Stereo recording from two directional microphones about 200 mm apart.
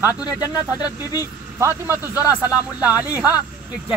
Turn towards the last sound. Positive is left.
turn(degrees=-10)  # may be behind; listen again after turning